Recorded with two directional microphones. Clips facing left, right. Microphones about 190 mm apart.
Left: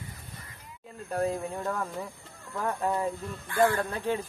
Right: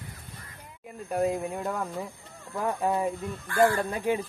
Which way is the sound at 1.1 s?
10° right (ahead or behind).